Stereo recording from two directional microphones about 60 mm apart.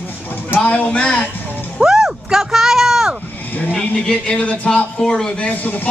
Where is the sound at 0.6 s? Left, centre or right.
Centre.